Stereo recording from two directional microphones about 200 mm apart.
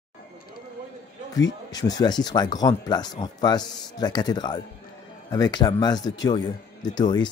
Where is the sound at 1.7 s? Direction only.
20° left (ahead or behind).